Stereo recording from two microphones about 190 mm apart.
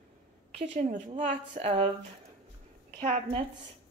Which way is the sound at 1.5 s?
30° right (ahead or behind).